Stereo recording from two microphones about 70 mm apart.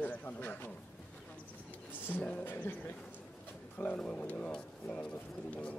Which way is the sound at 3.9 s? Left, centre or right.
Centre.